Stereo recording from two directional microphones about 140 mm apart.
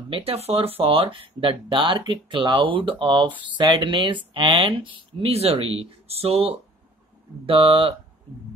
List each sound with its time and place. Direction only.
0.1 s speech: 45° right (ahead or behind)